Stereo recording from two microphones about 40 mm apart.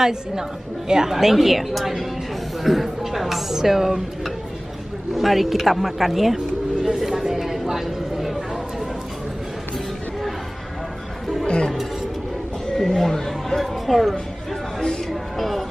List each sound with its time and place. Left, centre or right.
0.0 s a woman's voice: centre
6.3 s a sound: centre
11.4 s music: left
12.7 s speech: centre
13.6 s speech: centre
15.0 s a sound: centre